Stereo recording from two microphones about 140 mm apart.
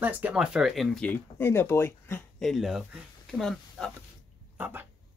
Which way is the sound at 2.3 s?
Centre (ahead or behind).